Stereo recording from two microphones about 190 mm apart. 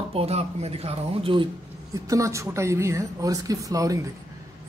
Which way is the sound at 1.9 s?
15° right (ahead or behind).